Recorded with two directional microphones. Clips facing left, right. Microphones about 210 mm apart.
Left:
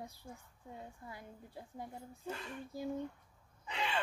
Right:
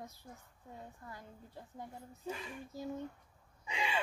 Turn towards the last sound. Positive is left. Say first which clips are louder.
# right 1 dB
turn(degrees=-10)  # may be behind; listen again after turning